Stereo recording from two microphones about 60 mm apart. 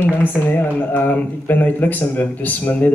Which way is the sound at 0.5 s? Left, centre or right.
Left.